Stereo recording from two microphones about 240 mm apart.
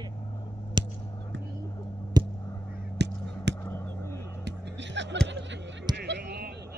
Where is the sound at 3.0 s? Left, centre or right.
Right.